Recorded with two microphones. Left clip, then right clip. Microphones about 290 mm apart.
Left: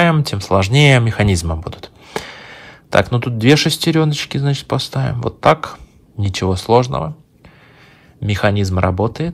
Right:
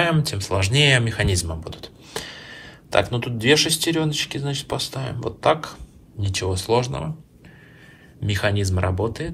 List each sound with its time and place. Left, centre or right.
0.1 s speech: left
8.3 s speech: left